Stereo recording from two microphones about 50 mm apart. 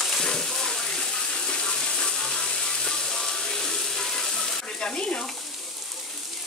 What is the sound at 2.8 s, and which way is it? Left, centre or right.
Music, centre.